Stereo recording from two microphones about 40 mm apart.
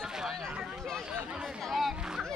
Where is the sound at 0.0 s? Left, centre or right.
Centre.